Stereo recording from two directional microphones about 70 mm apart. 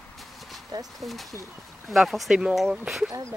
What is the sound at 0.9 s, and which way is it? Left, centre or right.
Speech, centre.